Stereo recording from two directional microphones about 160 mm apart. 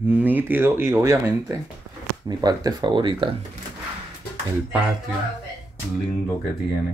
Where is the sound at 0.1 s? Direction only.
10° right (ahead or behind); by 3.3 s 30° right (ahead or behind).